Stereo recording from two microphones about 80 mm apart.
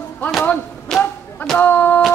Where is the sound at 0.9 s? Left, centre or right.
Centre.